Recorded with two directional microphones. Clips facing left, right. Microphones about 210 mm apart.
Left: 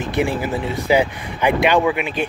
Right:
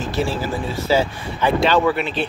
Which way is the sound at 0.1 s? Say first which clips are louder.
Left 3 dB; 15° left (ahead or behind).